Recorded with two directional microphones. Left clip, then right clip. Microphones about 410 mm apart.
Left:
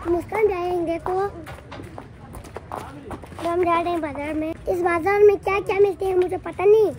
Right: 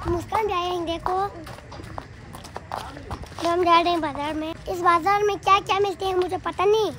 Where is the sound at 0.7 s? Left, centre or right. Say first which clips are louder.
Left 2 dB; right.